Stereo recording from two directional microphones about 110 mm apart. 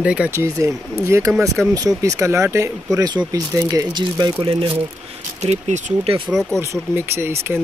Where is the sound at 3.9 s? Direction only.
45° right (ahead or behind).